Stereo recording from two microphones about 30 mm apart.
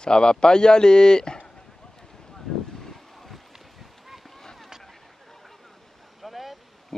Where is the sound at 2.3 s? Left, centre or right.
Centre.